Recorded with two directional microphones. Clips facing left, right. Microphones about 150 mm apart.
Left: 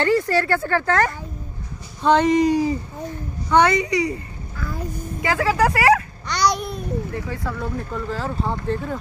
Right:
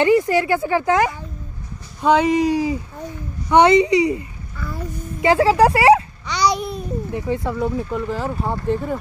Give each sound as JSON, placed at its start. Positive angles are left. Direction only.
{"t": 0.0, "sound": "speech", "side_deg": -15}
{"t": 3.4, "sound": "speech", "side_deg": -20}
{"t": 5.2, "sound": "speech", "side_deg": -25}
{"t": 6.2, "sound": "babbling", "side_deg": -5}
{"t": 7.2, "sound": "speech", "side_deg": -20}